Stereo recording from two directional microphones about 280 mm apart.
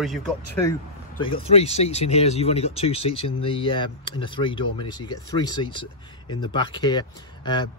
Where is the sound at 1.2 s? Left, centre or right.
Centre.